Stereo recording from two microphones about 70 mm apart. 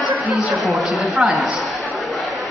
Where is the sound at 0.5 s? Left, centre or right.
Centre.